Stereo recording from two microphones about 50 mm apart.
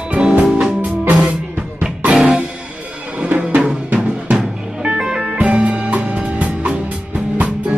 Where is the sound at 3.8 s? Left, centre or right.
Right.